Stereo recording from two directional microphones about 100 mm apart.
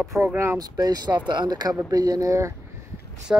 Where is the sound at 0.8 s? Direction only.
40° right (ahead or behind).